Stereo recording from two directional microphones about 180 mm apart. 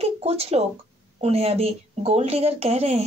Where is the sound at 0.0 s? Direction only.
35° right (ahead or behind).